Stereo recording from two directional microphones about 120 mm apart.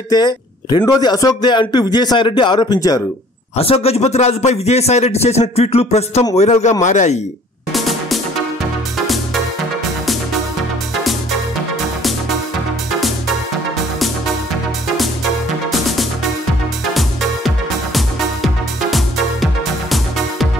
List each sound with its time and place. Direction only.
0.1 s speech: 35° left (ahead or behind)
3.5 s a man's voice: 55° left (ahead or behind)
6.8 s a man's voice: 85° left
7.7 s music: centre (ahead or behind)
16.9 s music: centre (ahead or behind)